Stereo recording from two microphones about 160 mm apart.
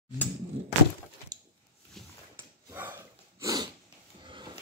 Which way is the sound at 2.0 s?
Centre (ahead or behind).